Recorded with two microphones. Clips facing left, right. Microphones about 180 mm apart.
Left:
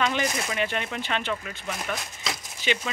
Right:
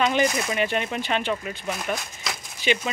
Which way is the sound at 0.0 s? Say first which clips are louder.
Right 4 dB; 20° right (ahead or behind).